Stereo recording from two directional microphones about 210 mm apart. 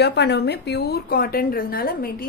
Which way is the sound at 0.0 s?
50° left (ahead or behind).